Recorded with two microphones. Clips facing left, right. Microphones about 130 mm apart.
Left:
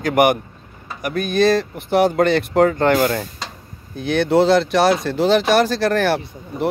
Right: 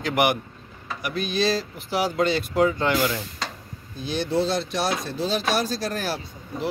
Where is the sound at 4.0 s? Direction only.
60° left (ahead or behind).